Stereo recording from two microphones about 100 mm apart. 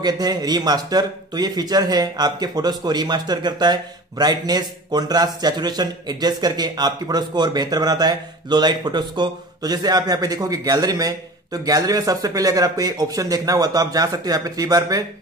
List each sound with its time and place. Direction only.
0.0 s a man's voice: 40° right (ahead or behind)